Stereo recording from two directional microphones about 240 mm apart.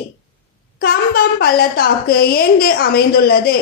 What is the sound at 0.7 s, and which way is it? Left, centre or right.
A woman's voice, left.